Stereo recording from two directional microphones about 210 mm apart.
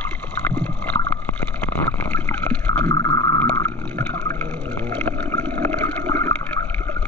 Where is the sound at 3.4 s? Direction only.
10° left (ahead or behind).